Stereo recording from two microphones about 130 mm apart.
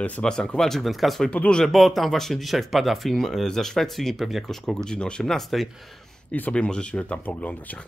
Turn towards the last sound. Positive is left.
turn(degrees=10)  # may be behind; listen again after turning